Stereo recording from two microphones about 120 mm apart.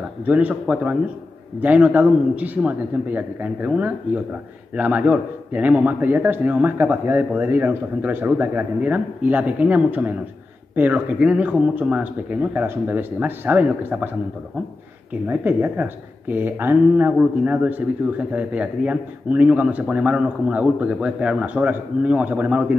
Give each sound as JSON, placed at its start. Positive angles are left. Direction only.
{"t": 0.3, "sound": "speech", "side_deg": -10}
{"t": 15.2, "sound": "speech", "side_deg": -15}